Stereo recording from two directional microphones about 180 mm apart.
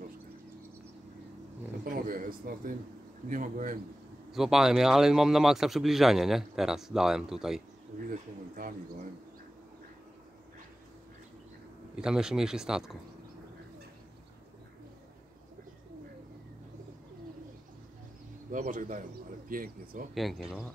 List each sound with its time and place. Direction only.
1.9 s speech: 50° right (ahead or behind)
4.3 s a man's voice: centre (ahead or behind)
8.1 s speech: 50° right (ahead or behind)
11.9 s a man's voice: 5° right (ahead or behind)
18.5 s speech: 45° right (ahead or behind)
20.2 s a man's voice: centre (ahead or behind)